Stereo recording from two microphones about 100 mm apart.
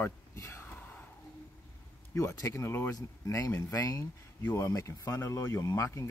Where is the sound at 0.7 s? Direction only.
15° left (ahead or behind).